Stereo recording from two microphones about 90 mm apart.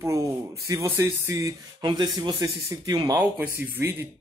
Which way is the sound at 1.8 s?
55° right (ahead or behind).